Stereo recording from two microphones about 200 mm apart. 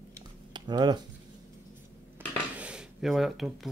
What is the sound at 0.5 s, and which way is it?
Speech, 20° right (ahead or behind).